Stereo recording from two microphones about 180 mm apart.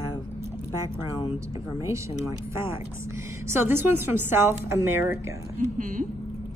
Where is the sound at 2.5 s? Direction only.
15° right (ahead or behind).